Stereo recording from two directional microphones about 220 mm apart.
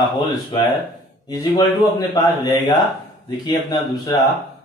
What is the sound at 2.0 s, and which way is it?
A man's voice, 20° left (ahead or behind).